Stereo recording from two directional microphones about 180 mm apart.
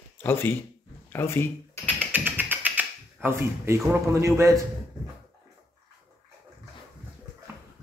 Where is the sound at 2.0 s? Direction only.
10° right (ahead or behind).